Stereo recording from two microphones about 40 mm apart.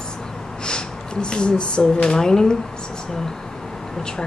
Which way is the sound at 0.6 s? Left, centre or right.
Left.